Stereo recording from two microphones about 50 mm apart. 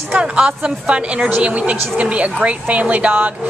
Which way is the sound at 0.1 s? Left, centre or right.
Right.